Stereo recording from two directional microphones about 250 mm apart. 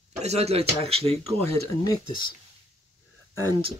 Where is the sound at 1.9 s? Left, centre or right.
Centre.